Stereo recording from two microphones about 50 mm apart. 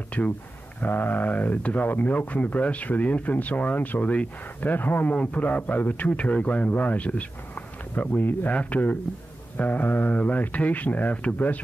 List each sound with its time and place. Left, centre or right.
0.8 s speech: left